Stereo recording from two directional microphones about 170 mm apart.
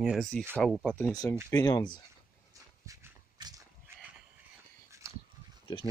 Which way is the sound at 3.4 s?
25° right (ahead or behind).